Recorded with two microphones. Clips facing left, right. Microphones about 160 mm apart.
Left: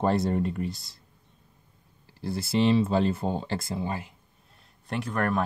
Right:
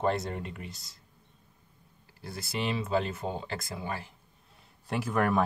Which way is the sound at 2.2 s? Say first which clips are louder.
Left 10 dB; 30° left (ahead or behind).